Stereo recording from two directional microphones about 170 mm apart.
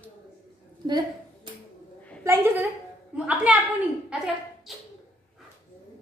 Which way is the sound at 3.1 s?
5° right (ahead or behind).